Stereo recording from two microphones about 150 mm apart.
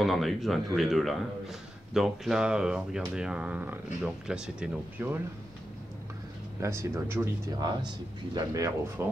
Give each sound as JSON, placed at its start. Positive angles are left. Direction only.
{"t": 0.0, "sound": "speech", "side_deg": 0}
{"t": 6.6, "sound": "speech", "side_deg": -20}
{"t": 7.5, "sound": "speech", "side_deg": -25}